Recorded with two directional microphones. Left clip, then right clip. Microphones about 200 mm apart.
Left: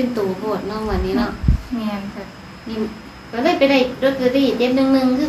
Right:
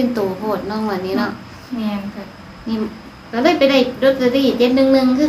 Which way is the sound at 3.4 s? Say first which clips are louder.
Right 2 dB; 30° right (ahead or behind).